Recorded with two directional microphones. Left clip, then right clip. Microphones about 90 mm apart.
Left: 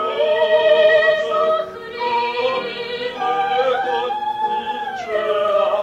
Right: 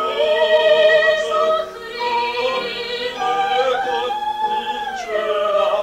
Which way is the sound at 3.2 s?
45° right (ahead or behind).